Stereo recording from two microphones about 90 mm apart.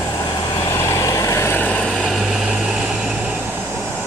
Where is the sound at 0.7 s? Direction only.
35° left (ahead or behind).